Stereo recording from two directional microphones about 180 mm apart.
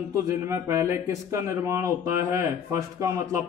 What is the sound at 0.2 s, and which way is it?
A man's voice, 15° right (ahead or behind).